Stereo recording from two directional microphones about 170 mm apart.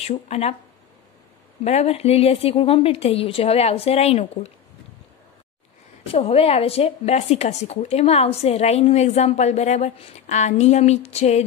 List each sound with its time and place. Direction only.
0.0 s a woman's voice: 40° left (ahead or behind)
1.6 s a woman's voice: 40° left (ahead or behind)
6.1 s a woman's voice: 35° left (ahead or behind)